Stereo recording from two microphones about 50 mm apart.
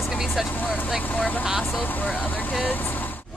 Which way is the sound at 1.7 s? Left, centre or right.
Left.